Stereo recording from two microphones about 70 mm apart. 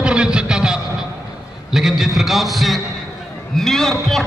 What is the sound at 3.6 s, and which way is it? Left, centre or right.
Speech, centre.